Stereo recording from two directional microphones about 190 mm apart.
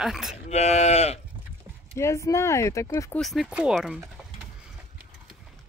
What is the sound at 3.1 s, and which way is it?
Speech, centre (ahead or behind).